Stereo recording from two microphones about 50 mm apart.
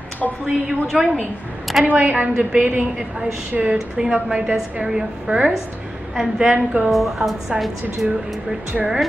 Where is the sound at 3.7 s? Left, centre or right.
Centre.